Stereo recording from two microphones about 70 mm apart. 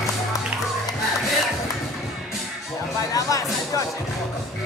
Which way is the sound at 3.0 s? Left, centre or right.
Left.